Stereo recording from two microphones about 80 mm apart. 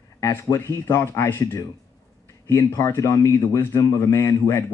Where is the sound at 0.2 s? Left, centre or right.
Left.